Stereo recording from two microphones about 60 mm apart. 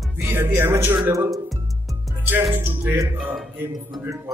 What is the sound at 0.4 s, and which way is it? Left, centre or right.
Music, right.